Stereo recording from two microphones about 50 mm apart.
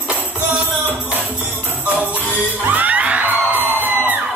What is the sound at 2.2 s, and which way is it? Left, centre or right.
Music, right.